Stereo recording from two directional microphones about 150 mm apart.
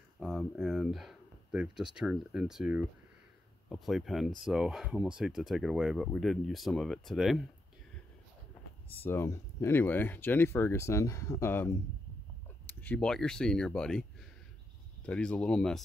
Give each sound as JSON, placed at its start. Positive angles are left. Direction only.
{"t": 0.2, "sound": "speech", "side_deg": 0}
{"t": 9.0, "sound": "speech", "side_deg": 15}
{"t": 15.0, "sound": "speech", "side_deg": 5}